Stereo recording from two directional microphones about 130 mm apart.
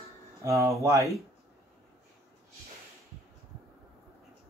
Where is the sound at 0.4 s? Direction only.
25° right (ahead or behind).